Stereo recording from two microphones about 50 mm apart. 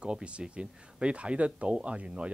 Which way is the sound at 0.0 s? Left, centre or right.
Right.